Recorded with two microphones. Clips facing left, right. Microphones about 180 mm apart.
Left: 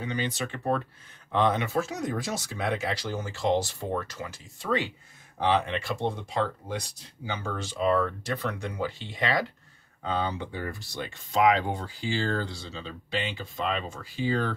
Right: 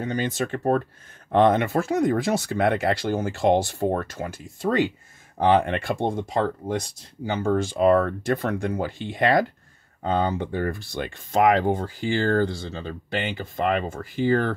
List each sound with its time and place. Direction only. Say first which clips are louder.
0.0 s speech: right 5 dB; 45° right (ahead or behind)